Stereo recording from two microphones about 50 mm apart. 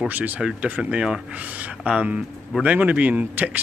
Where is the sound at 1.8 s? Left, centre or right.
Right.